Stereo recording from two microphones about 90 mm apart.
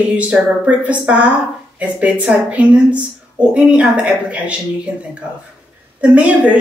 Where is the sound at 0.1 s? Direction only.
15° right (ahead or behind).